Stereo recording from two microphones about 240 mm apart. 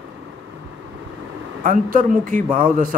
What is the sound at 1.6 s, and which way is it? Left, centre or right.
Speech, right.